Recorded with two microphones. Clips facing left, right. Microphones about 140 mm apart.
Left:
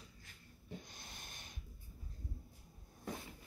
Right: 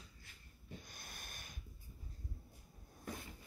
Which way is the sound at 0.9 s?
25° left (ahead or behind).